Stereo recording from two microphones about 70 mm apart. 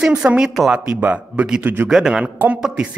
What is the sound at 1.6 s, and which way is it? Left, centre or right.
Speech, right.